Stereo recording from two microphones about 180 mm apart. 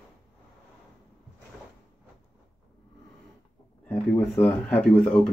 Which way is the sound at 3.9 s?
10° left (ahead or behind).